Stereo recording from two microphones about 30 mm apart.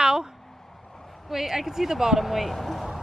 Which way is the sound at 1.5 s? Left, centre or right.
Centre.